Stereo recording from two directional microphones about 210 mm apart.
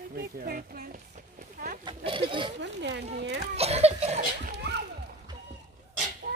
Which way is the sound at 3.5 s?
30° right (ahead or behind).